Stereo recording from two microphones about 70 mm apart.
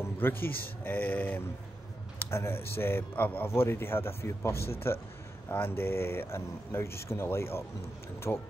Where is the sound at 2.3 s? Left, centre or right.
Left.